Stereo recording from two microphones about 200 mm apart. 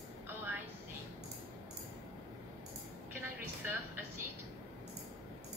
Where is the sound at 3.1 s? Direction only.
10° right (ahead or behind).